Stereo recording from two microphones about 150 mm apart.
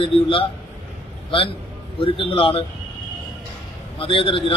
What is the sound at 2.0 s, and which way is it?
Speech, 35° left (ahead or behind).